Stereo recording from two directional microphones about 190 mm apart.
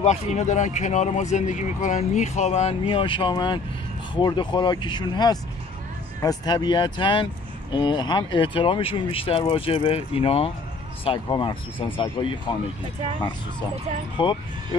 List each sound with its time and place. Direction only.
0.0 s speech: 35° left (ahead or behind)
14.2 s speech: 25° left (ahead or behind)